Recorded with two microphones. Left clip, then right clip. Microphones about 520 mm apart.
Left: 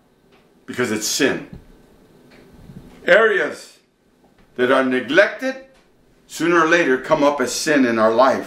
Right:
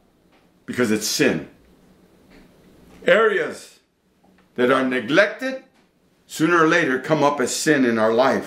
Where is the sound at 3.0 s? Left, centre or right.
Right.